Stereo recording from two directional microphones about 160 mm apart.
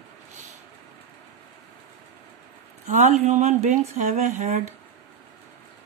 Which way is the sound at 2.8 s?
50° right (ahead or behind).